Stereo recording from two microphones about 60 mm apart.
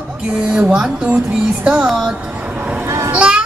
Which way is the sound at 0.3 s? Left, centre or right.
Centre.